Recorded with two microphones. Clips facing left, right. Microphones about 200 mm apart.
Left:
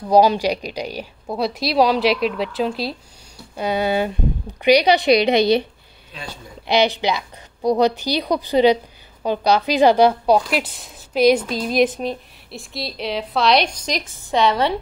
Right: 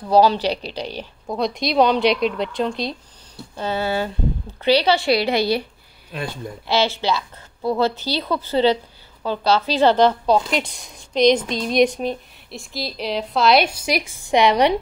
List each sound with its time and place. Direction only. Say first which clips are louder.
0.1 s speech: left 1 dB; 15° left (ahead or behind)
3.5 s a woman's voice: left 3 dB; 15° left (ahead or behind)
6.1 s speech: right 8 dB; 55° right (ahead or behind)
6.7 s a woman's voice: left 2 dB; 15° left (ahead or behind); by 14.8 s 15° right (ahead or behind)